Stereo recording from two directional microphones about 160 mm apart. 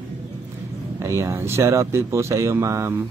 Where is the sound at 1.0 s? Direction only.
20° right (ahead or behind).